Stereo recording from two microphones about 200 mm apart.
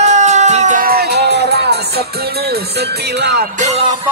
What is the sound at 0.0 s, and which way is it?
Music, 35° right (ahead or behind).